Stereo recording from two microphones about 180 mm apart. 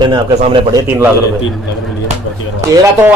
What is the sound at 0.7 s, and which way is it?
Speech, 15° right (ahead or behind).